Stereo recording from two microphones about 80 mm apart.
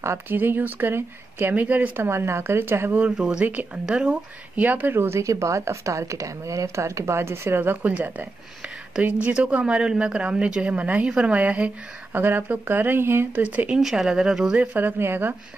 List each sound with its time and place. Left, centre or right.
0.3 s speech: right
2.0 s speech: right
3.0 s a woman's voice: centre
4.9 s a woman's voice: right
13.7 s speech: centre
14.6 s speech: right